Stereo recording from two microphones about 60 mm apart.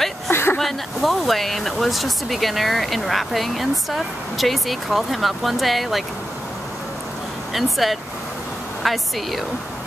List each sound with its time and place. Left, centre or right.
0.3 s vehicle: left
0.6 s speech: centre
7.5 s speech: centre